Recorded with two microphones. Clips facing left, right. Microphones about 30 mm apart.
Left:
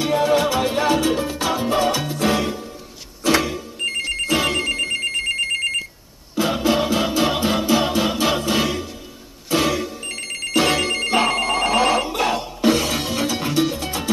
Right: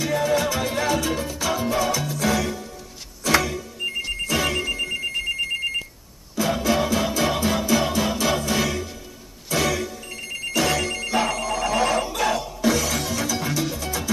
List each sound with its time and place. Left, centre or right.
0.0 s music: left
3.3 s a sound: left
4.3 s telephone bell ringing: left
6.3 s music: left
10.0 s telephone bell ringing: left
10.5 s telephone bell ringing: left